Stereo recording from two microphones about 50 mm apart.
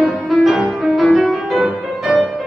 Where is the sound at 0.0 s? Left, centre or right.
Centre.